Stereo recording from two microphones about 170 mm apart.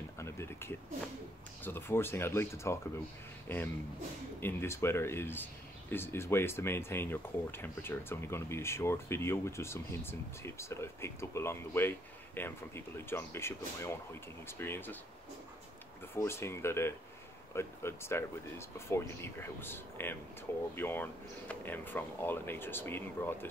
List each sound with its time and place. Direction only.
0.2 s a sound: 15° left (ahead or behind)
1.6 s speech: 10° left (ahead or behind)
16.2 s speech: 15° left (ahead or behind)